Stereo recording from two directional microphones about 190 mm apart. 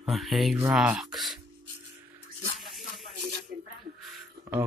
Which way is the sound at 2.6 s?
Centre (ahead or behind).